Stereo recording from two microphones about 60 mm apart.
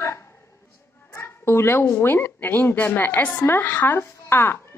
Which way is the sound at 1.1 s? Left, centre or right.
Left.